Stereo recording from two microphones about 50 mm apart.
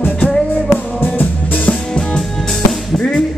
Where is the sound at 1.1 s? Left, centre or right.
Left.